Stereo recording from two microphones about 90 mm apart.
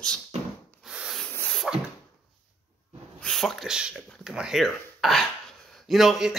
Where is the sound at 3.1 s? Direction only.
5° left (ahead or behind).